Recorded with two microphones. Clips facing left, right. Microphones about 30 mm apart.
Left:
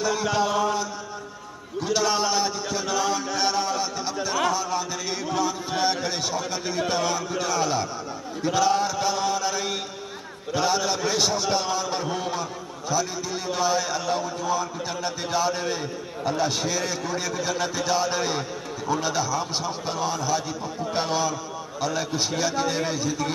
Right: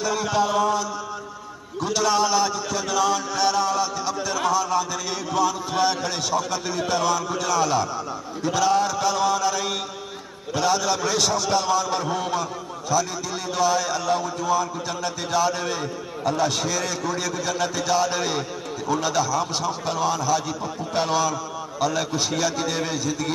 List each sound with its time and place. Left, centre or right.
0.0 s a sound: centre
1.9 s chant: centre
5.3 s a man's voice: centre